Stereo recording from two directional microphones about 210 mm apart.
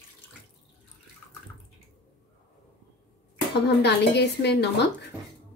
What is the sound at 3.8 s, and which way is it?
A woman's voice, 55° left (ahead or behind).